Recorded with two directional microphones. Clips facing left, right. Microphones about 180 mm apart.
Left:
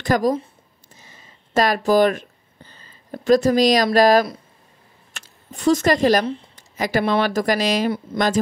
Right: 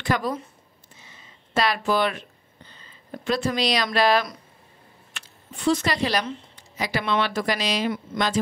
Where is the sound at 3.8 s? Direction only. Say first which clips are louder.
Left 6 dB; 40° left (ahead or behind).